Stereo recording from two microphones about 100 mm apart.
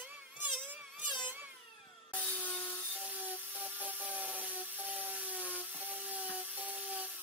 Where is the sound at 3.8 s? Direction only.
15° right (ahead or behind).